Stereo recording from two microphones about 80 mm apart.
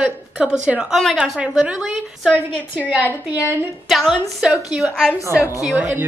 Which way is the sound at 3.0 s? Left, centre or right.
Left.